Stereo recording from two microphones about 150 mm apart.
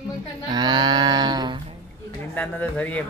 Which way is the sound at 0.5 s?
30° right (ahead or behind).